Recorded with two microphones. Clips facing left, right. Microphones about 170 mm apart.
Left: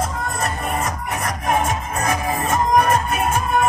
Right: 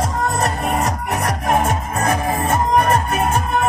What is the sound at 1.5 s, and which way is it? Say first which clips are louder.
Music: right 1 dB; 55° right (ahead or behind).